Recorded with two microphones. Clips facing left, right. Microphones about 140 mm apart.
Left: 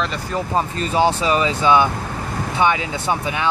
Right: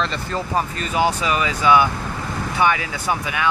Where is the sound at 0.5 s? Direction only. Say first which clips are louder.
Left 3 dB; 30° left (ahead or behind).